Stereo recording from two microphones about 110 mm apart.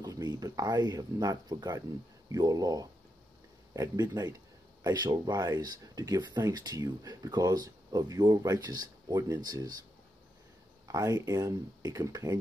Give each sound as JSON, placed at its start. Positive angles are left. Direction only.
{"t": 0.0, "sound": "speech", "side_deg": -40}
{"t": 10.9, "sound": "speech", "side_deg": -30}